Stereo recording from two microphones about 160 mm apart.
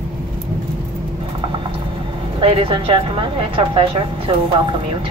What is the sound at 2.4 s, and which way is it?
A woman's voice, 30° right (ahead or behind).